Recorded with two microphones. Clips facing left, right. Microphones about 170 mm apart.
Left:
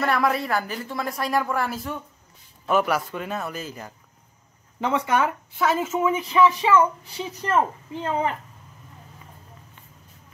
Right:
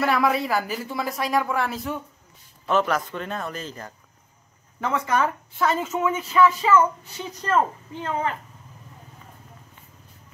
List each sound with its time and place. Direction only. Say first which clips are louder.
0.0 s speech: right 1 dB; centre (ahead or behind)